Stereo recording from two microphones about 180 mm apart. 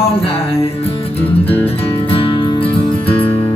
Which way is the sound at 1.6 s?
30° left (ahead or behind).